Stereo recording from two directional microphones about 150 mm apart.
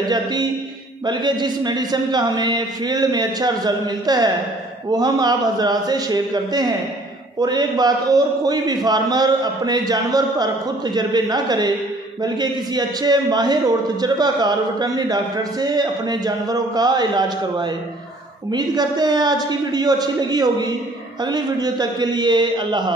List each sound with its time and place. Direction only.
0.1 s a man's voice: 25° right (ahead or behind)